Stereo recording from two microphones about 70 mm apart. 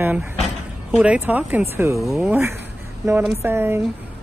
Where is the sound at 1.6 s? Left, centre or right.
Right.